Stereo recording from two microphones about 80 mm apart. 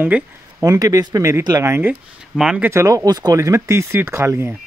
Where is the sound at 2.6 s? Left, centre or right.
Right.